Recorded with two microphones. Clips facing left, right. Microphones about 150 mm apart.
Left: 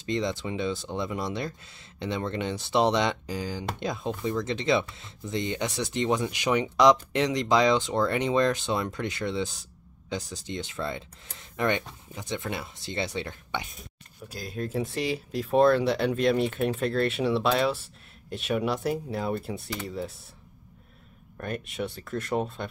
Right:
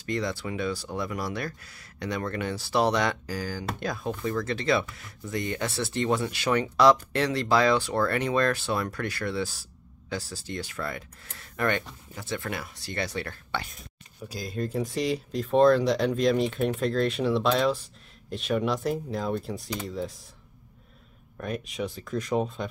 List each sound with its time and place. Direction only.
0.0 s speech: 20° left (ahead or behind)
14.3 s speech: centre (ahead or behind)
21.4 s speech: centre (ahead or behind)